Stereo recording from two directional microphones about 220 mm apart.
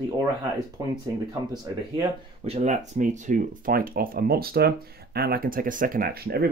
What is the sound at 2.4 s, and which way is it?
Speech, 30° right (ahead or behind).